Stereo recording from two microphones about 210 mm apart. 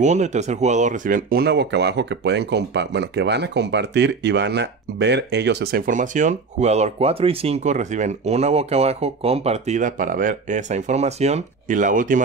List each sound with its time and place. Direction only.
0.0 s speech: 35° right (ahead or behind)